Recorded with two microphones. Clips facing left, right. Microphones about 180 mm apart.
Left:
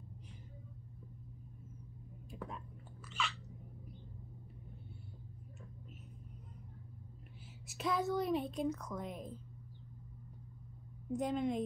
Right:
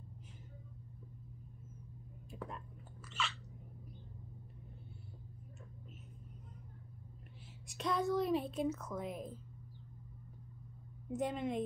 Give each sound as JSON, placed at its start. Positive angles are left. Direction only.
{"t": 2.3, "sound": "whispering", "side_deg": 0}
{"t": 7.6, "sound": "a woman's voice", "side_deg": 5}
{"t": 11.1, "sound": "a woman's voice", "side_deg": 0}